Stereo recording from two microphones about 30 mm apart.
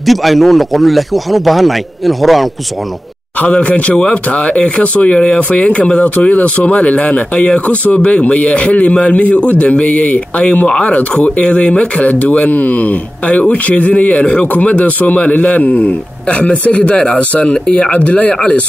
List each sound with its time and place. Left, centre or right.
0.0 s a man's voice: centre
3.6 s speech: left
3.9 s speech: left
12.4 s a man's voice: left
14.6 s a man's voice: left
16.9 s speech: left
17.2 s speech: left